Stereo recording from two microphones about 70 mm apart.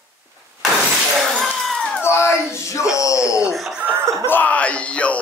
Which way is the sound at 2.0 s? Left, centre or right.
Left.